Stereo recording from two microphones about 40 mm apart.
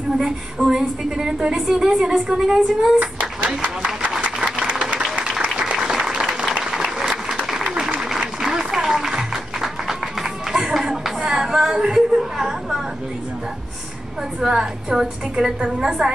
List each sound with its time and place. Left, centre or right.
0.2 s a woman's voice: centre
3.0 s speech: right
5.8 s applause: centre
10.5 s a sound: centre
14.4 s a woman's voice: centre